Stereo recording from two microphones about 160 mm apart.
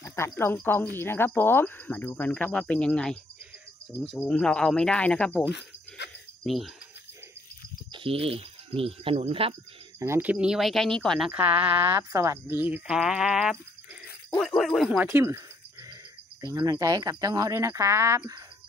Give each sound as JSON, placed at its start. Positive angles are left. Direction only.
{"t": 0.0, "sound": "speech", "side_deg": 15}
{"t": 4.3, "sound": "speech", "side_deg": 5}
{"t": 6.4, "sound": "speech", "side_deg": 0}
{"t": 7.9, "sound": "speech", "side_deg": -35}
{"t": 9.9, "sound": "speech", "side_deg": -15}